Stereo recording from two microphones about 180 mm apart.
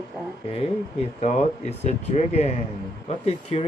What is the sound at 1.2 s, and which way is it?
Speech, 40° left (ahead or behind).